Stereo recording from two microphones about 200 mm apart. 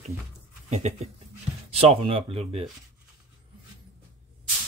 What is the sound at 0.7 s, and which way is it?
Speech, 35° right (ahead or behind).